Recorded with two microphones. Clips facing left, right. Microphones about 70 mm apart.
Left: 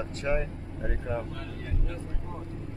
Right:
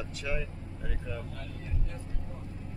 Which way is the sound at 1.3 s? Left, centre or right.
Left.